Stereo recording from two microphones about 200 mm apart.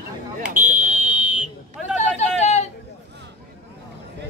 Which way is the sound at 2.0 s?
35° left (ahead or behind).